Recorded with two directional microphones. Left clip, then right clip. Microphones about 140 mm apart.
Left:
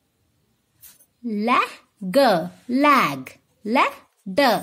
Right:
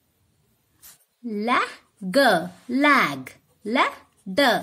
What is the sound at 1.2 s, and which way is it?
A woman's voice, 30° left (ahead or behind).